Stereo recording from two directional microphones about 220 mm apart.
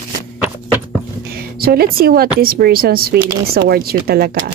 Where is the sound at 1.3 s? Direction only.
45° right (ahead or behind).